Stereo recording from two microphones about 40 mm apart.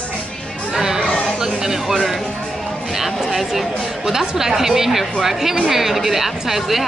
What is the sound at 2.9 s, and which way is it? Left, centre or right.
A woman's voice, centre.